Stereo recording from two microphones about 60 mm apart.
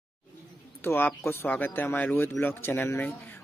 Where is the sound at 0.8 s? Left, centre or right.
Left.